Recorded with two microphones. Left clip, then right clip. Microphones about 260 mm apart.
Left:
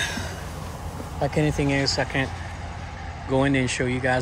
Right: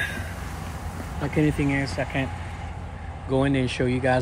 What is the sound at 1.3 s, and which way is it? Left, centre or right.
Speech, left.